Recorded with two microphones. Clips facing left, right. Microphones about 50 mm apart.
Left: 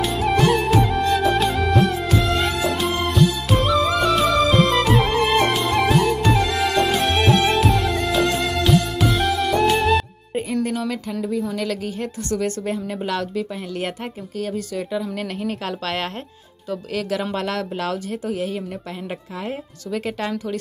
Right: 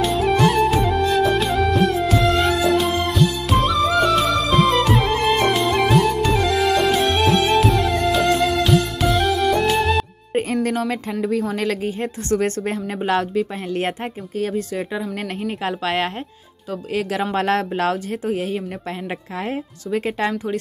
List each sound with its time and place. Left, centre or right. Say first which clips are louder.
0.0 s music: right 2 dB; centre
10.6 s a sound: right 2 dB; right
11.2 s speech: right 3 dB; right
11.6 s speech: right 3 dB; right
15.6 s a woman's voice: right 4 dB; right